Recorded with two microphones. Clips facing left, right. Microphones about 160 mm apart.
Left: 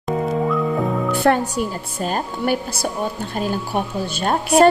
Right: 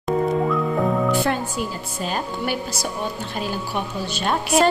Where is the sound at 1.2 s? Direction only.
65° left (ahead or behind); by 4.6 s 40° left (ahead or behind).